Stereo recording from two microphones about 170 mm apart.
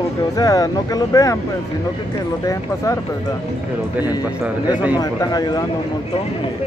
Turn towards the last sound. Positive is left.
turn(degrees=25)  # may be behind; listen again after turning